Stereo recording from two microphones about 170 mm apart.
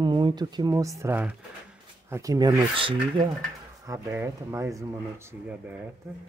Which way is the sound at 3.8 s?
15° right (ahead or behind).